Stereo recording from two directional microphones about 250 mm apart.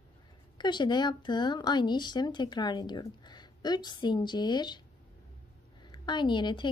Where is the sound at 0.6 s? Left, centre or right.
Centre.